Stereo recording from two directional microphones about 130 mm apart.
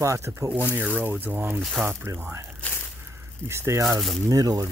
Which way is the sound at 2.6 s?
15° left (ahead or behind).